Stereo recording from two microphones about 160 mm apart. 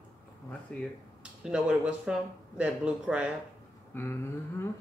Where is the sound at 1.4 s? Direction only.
5° right (ahead or behind).